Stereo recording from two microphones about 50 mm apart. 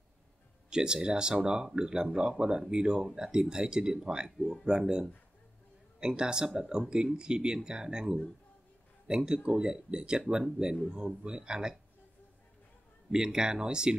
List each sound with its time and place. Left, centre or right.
0.7 s speech: centre
13.1 s speech: centre